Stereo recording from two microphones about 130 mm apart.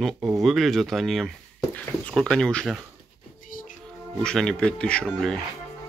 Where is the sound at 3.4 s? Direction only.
90° left.